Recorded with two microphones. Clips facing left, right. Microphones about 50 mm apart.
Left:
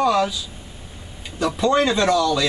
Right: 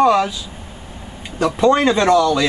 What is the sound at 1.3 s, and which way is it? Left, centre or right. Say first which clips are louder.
A woman's voice: right 4 dB; right.